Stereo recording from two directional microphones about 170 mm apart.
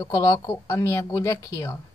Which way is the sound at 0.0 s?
20° left (ahead or behind).